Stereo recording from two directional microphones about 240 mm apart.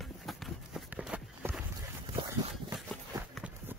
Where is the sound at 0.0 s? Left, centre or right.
Centre.